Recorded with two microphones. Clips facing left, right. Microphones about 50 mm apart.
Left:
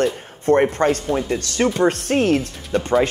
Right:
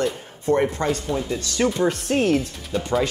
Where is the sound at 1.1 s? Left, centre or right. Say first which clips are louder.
Left 4 dB; left.